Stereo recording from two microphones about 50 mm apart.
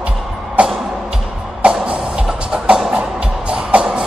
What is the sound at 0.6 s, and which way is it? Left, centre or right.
Music, right.